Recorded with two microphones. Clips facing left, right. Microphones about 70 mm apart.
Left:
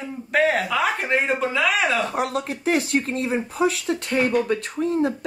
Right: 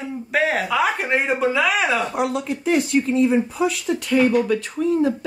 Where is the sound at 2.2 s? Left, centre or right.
Left.